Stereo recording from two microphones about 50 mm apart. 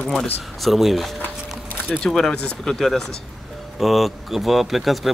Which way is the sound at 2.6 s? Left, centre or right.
Centre.